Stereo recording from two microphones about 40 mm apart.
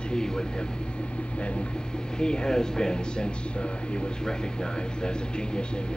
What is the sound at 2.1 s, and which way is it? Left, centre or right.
Speech, left.